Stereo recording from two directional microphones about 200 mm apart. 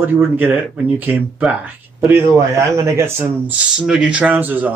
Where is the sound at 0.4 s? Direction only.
10° right (ahead or behind).